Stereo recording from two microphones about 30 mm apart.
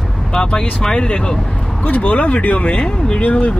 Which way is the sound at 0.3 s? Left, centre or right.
Left.